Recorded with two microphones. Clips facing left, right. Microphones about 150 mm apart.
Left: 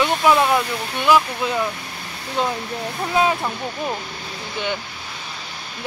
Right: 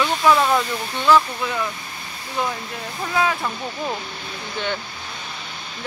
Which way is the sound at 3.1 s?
25° left (ahead or behind).